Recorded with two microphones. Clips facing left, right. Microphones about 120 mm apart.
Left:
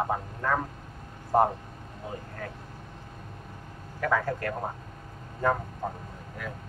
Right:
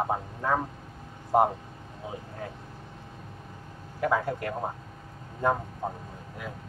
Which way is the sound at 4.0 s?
20° right (ahead or behind).